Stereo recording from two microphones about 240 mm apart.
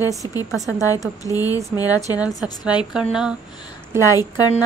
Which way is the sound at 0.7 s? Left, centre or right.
Centre.